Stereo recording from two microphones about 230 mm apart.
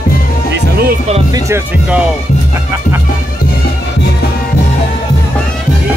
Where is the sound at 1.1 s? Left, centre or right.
Centre.